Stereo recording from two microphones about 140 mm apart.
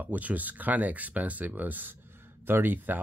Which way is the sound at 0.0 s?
10° right (ahead or behind).